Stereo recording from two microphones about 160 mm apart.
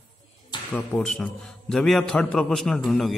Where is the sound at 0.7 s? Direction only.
5° left (ahead or behind).